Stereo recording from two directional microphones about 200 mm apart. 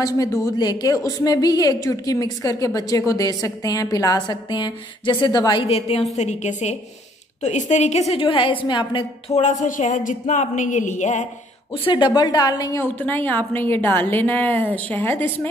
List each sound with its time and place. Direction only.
0.0 s a woman's voice: 15° left (ahead or behind)
9.3 s a woman's voice: 35° left (ahead or behind)
11.7 s a woman's voice: 25° left (ahead or behind); by 15.4 s 10° left (ahead or behind)